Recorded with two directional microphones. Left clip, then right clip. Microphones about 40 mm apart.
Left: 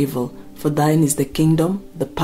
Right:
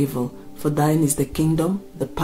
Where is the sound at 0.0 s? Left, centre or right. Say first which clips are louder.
Left 2 dB; left.